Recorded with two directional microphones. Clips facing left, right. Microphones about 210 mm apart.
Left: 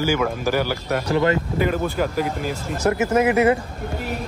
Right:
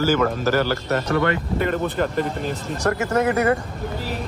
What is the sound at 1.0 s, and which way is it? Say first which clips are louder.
Speech: left 3 dB; 30° left (ahead or behind).